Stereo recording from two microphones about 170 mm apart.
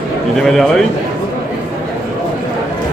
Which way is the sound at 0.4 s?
Centre (ahead or behind).